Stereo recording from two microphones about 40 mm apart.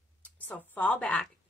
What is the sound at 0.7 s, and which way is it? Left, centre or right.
Speech, left.